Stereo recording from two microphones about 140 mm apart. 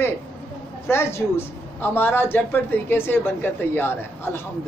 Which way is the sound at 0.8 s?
20° left (ahead or behind).